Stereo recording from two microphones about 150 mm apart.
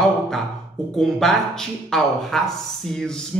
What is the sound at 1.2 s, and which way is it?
Speech, centre (ahead or behind).